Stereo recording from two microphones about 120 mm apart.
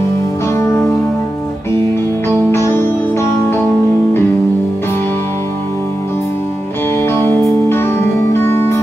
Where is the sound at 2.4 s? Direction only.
20° left (ahead or behind).